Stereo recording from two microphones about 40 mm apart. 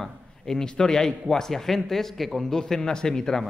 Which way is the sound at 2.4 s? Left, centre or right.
Centre.